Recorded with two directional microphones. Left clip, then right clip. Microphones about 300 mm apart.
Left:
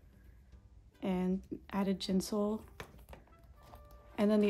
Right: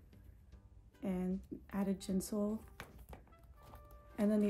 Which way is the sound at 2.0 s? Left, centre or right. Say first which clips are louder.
Left 5 dB; centre.